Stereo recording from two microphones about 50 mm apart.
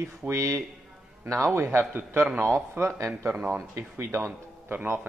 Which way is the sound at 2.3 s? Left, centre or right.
Right.